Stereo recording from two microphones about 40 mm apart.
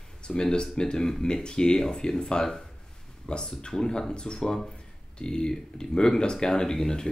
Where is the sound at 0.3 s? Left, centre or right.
Left.